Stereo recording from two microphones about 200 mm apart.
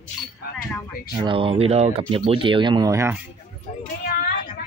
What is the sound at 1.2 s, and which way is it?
Speech, 25° right (ahead or behind).